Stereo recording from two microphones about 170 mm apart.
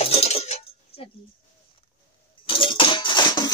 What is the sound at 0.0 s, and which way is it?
Dishes, 35° left (ahead or behind).